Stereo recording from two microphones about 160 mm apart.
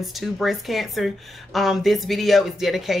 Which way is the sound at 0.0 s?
Centre (ahead or behind).